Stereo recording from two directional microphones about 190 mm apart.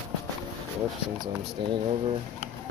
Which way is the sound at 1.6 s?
25° right (ahead or behind).